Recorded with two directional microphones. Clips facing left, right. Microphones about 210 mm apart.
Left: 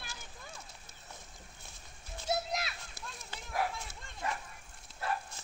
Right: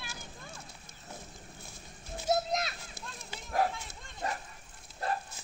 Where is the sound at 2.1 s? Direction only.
40° right (ahead or behind).